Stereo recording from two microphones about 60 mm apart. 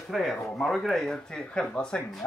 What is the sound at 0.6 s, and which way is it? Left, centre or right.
Speech, centre.